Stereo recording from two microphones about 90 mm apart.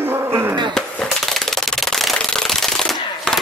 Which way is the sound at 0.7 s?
5° left (ahead or behind).